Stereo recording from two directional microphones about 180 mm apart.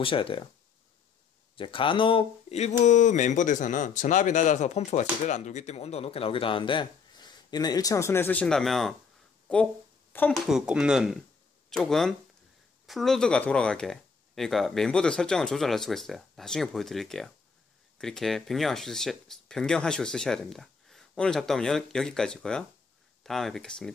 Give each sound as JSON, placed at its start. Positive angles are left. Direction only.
{"t": 0.0, "sound": "speech", "side_deg": 30}
{"t": 1.6, "sound": "speech", "side_deg": 30}
{"t": 10.3, "sound": "speech", "side_deg": 0}